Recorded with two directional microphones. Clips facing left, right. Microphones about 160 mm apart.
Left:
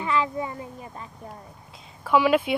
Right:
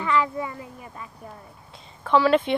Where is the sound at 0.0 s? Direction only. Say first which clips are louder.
Right 1 dB; 25° left (ahead or behind).